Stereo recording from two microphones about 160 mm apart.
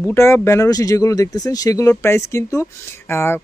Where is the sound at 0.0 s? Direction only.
15° left (ahead or behind).